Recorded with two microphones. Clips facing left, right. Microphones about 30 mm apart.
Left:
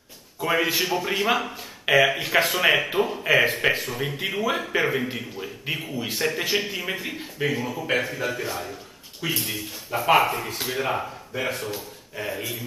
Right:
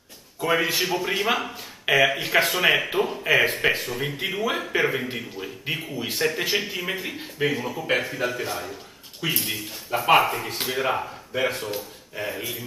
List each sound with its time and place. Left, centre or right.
0.4 s speech: centre